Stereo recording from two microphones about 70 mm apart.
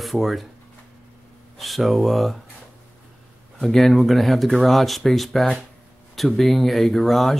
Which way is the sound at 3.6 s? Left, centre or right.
Centre.